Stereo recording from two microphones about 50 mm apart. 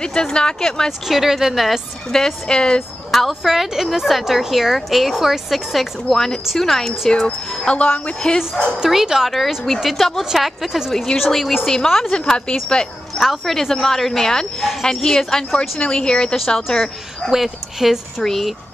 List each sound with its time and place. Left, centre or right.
0.0 s speech: centre
0.8 s a woman's voice: centre
2.1 s speech: centre
3.1 s a woman's voice: centre
7.1 s speech: left
8.7 s speech: centre
9.3 s a woman's voice: centre
12.1 s speech: centre
13.4 s speech: centre
17.3 s speech: centre
18.2 s a woman's voice: centre